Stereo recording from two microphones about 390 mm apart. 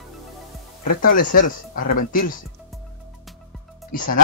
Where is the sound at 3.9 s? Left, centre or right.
Left.